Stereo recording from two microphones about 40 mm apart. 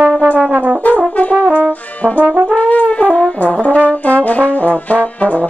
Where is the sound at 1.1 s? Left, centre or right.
Left.